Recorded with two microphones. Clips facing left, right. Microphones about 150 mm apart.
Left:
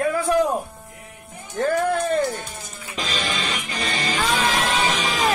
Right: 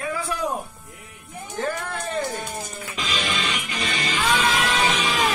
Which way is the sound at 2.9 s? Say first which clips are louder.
Left 1 dB; 35° left (ahead or behind).